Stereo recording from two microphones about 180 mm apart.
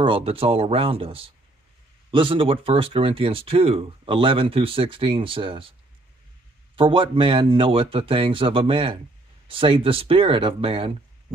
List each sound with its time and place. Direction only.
0.0 s speech: 30° right (ahead or behind)